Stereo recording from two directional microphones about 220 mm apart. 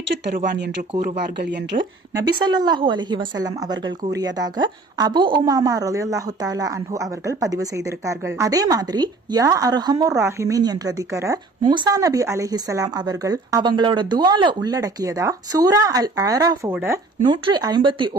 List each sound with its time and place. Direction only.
0.5 s speech: 50° right (ahead or behind)
2.1 s a woman's voice: 20° right (ahead or behind)